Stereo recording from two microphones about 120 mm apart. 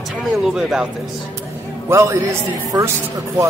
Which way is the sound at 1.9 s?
25° right (ahead or behind).